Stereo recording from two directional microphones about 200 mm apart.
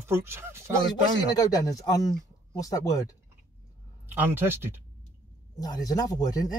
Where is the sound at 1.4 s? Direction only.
15° left (ahead or behind).